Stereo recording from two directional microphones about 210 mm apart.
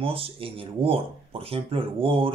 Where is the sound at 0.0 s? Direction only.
25° right (ahead or behind).